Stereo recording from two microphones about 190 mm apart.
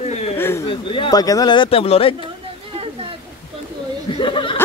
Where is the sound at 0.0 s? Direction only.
35° left (ahead or behind).